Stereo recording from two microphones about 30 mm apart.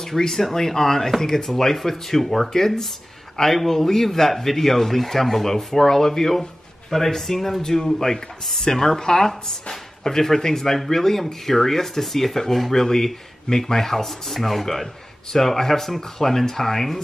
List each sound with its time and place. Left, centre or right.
0.2 s speech: centre